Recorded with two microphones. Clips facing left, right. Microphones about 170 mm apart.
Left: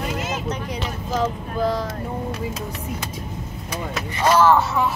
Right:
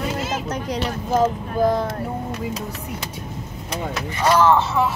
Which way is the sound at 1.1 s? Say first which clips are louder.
Right 4 dB; 50° right (ahead or behind).